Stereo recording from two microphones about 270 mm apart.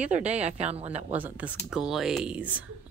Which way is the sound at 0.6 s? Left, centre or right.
Right.